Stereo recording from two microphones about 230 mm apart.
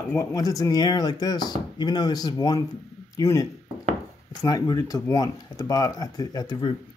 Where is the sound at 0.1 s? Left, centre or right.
Centre.